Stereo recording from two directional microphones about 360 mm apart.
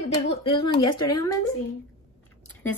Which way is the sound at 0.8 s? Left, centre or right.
Left.